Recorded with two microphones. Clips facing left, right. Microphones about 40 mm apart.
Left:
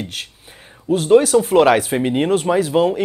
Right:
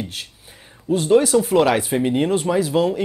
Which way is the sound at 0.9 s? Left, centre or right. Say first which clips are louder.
Left 3 dB; left.